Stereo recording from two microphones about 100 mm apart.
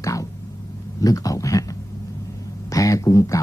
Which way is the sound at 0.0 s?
35° left (ahead or behind).